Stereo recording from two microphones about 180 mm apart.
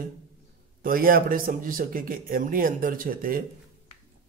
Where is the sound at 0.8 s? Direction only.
55° right (ahead or behind).